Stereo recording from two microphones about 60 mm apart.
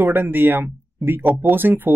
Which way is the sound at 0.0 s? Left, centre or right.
Right.